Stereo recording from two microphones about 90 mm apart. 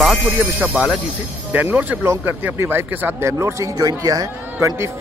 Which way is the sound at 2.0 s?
30° right (ahead or behind).